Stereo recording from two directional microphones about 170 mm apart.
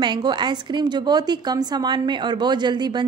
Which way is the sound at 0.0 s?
25° right (ahead or behind).